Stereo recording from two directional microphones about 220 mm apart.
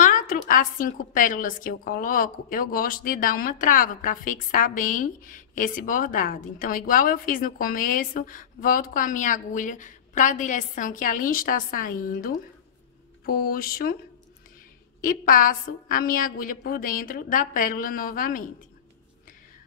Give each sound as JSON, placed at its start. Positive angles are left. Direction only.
{"t": 0.0, "sound": "a woman's voice", "side_deg": 40}
{"t": 13.2, "sound": "mantra", "side_deg": 45}
{"t": 15.0, "sound": "a woman's voice", "side_deg": 40}